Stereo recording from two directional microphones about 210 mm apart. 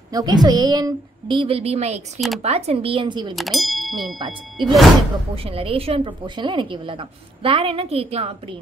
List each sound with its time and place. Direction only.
0.1 s a woman's voice: 20° right (ahead or behind)
2.1 s speech: centre (ahead or behind)
2.4 s a woman's voice: 30° right (ahead or behind)
3.3 s speech: centre (ahead or behind)
4.2 s a woman's voice: 20° right (ahead or behind)